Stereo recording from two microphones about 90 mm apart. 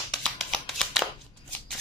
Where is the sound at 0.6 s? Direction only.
Centre (ahead or behind).